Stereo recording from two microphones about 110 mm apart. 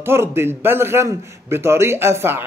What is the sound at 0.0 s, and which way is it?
Speech, 20° right (ahead or behind).